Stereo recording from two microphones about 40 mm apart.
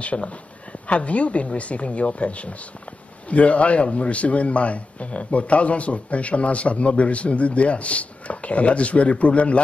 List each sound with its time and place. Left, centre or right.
0.0 s a man's voice: left